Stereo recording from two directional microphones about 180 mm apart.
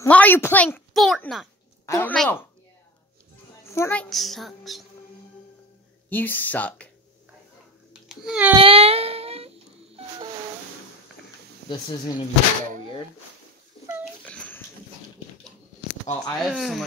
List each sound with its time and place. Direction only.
0.0 s a woman's voice: 10° left (ahead or behind)
3.7 s a woman's voice: 10° left (ahead or behind)
6.0 s speech: 10° left (ahead or behind)
8.1 s a woman's voice: 5° right (ahead or behind)
8.5 s humming: 30° right (ahead or behind)
11.7 s speech: 25° left (ahead or behind)
14.2 s dog: 10° left (ahead or behind)
16.3 s a woman's voice: centre (ahead or behind)